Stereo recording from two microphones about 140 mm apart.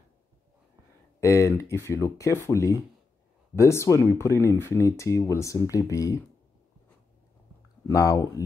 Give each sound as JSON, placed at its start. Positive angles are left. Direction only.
{"t": 1.2, "sound": "speech", "side_deg": 20}
{"t": 7.9, "sound": "speech", "side_deg": 25}